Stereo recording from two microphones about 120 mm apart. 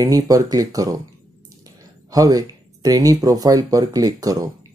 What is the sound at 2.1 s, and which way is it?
Speech, 30° right (ahead or behind).